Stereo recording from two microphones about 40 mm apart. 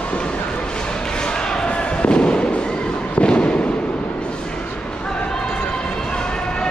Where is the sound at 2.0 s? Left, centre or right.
Left.